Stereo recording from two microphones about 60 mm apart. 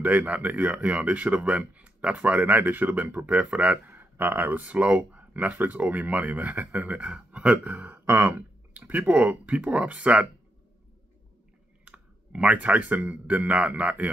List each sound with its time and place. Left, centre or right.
0.0 s speech: right
11.8 s speech: centre